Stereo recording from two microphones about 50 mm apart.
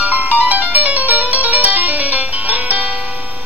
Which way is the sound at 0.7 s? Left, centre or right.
Right.